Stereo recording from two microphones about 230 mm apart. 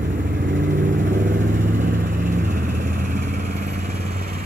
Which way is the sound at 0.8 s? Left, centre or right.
Right.